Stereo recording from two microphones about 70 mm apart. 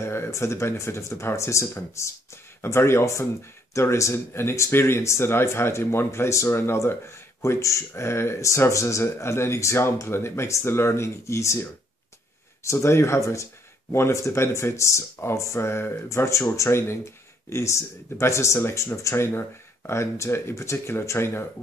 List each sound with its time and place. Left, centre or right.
0.0 s speech: left
12.7 s speech: left